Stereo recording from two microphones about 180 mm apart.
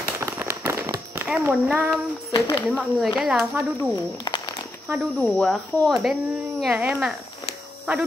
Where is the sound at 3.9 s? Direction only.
25° left (ahead or behind).